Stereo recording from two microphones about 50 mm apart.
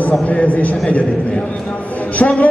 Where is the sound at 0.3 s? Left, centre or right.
Left.